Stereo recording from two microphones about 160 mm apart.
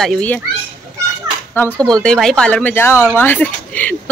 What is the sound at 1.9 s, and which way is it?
Speech, 5° left (ahead or behind).